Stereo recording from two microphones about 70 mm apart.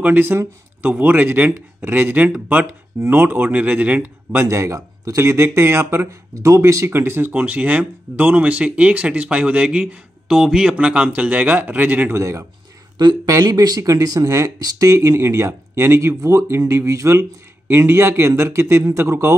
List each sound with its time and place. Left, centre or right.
0.0 s speech: right
4.5 s speech: right
6.9 s speech: right
12.1 s speech: right
12.9 s speech: right
13.3 s speech: right
17.6 s speech: right